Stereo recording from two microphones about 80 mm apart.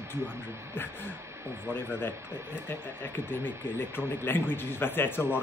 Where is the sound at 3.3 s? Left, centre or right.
Left.